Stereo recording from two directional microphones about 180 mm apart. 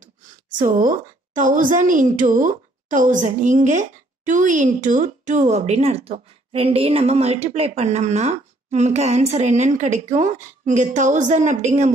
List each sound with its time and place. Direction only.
0.6 s a woman's voice: 45° right (ahead or behind)